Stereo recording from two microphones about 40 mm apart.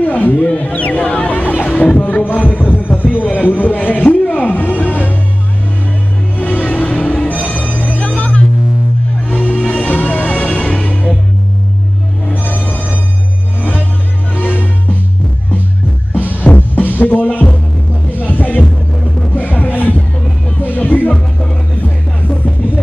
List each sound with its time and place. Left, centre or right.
0.0 s speech: left
3.3 s music: left
6.3 s music: left
6.9 s music: left
9.3 s music: left
12.3 s music: left
16.1 s music: left